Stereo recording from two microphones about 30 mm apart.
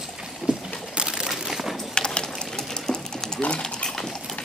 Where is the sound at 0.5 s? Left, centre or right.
Right.